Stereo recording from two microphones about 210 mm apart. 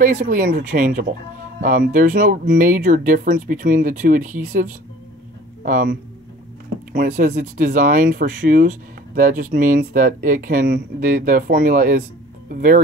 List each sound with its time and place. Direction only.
0.0 s speech: 40° right (ahead or behind)
6.9 s speech: 45° right (ahead or behind)